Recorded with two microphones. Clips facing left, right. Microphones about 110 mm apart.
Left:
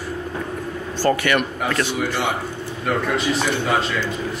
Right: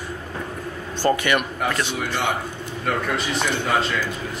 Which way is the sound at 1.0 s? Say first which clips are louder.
Left 1 dB; 20° right (ahead or behind).